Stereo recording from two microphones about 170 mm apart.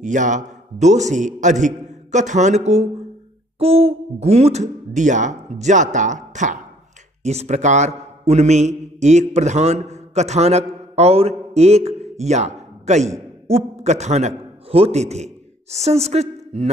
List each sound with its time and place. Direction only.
0.0 s a man's voice: 45° right (ahead or behind)